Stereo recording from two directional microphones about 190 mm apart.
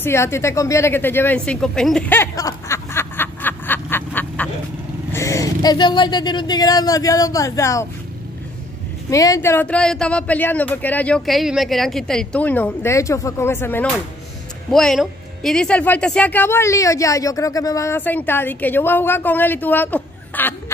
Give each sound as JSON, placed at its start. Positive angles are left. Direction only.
{"t": 0.0, "sound": "a sound", "side_deg": 15}
{"t": 5.1, "sound": "speech", "side_deg": 15}
{"t": 9.1, "sound": "speech", "side_deg": 20}